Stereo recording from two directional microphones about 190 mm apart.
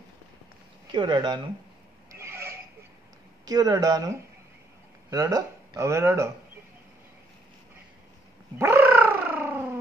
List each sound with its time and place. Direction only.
0.9 s speech: 25° right (ahead or behind)
2.0 s a sound: 15° right (ahead or behind)
3.4 s speech: 20° right (ahead or behind)
8.5 s gargling: 15° right (ahead or behind)